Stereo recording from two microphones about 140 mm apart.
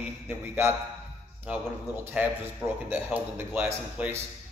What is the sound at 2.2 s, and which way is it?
A man's voice, 15° right (ahead or behind).